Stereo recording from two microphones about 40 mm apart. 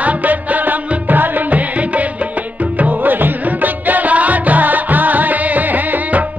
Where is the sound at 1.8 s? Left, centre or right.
Right.